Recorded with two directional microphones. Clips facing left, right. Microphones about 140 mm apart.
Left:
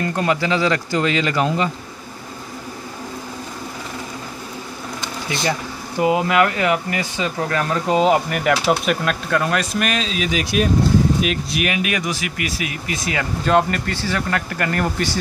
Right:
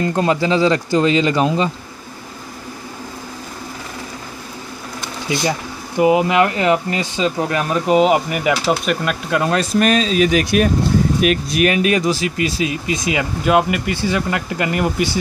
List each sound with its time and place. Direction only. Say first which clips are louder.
0.0 s speech: right 3 dB; 25° right (ahead or behind)
5.9 s speech: right 3 dB; 20° right (ahead or behind)
9.3 s speech: right 4 dB; 25° right (ahead or behind); by 10.7 s 55° right (ahead or behind)
11.2 s speech: right 6 dB; 40° right (ahead or behind); by 15.1 s 15° right (ahead or behind)